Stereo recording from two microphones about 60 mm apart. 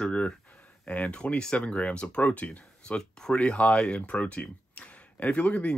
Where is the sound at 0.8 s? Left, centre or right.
Left.